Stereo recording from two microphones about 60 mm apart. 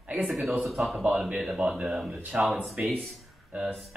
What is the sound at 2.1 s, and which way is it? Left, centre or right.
Speech, centre.